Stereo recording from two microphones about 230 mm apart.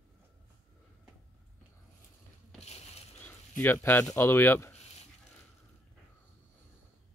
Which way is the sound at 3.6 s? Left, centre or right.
Centre.